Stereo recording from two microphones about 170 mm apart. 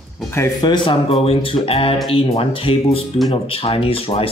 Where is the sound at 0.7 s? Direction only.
30° left (ahead or behind).